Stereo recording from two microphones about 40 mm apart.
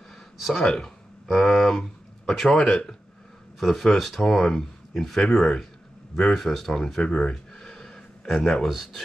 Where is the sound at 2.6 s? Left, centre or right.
Left.